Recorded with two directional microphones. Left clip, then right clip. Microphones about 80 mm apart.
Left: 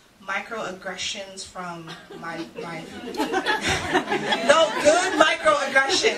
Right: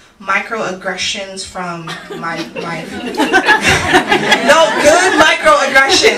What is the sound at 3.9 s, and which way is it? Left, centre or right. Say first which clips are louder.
Speech: right 12 dB; right.